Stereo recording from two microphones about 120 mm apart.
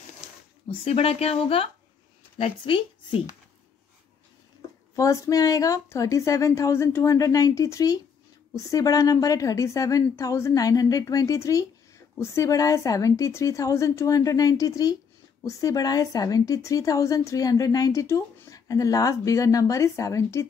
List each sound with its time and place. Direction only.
0.8 s a woman's voice: 55° left (ahead or behind)
4.9 s a woman's voice: 25° left (ahead or behind)